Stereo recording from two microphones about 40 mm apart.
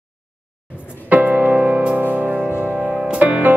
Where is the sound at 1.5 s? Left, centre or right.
Right.